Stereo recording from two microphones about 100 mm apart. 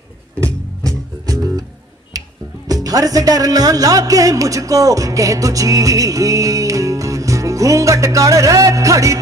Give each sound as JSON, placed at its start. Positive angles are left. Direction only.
{"t": 0.8, "sound": "music", "side_deg": -35}
{"t": 2.7, "sound": "speech", "side_deg": -35}